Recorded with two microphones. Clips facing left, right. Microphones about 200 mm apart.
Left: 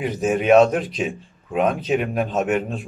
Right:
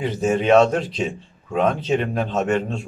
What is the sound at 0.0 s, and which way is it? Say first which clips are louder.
Speech: right 1 dB; 10° left (ahead or behind).